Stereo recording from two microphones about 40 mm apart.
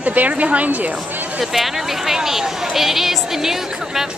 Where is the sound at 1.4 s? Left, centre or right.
Centre.